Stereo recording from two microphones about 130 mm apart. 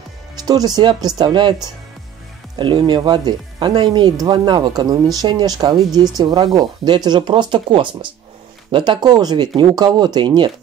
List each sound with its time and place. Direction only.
0.5 s speech: 30° right (ahead or behind)